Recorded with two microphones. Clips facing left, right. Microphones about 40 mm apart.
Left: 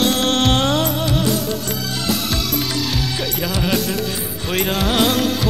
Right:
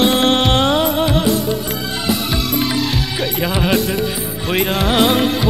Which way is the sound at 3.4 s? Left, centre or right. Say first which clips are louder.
Right 4 dB; right.